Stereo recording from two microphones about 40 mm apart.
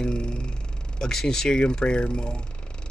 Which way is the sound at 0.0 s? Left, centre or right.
Left.